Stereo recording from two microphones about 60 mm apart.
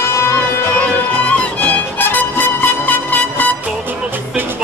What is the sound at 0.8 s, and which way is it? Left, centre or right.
Music, left.